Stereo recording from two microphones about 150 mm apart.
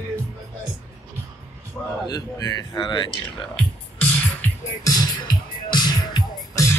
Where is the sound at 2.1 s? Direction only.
25° left (ahead or behind).